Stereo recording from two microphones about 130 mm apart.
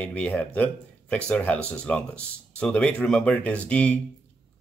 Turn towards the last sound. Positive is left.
turn(degrees=10)  # may be behind; listen again after turning